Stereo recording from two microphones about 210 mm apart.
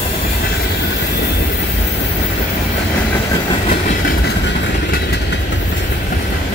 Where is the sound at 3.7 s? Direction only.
35° left (ahead or behind).